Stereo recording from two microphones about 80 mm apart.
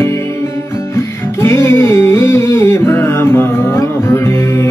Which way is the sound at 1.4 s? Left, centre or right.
Left.